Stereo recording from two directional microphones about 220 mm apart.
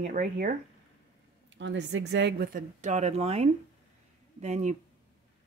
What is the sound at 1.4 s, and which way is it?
Speech, 55° right (ahead or behind).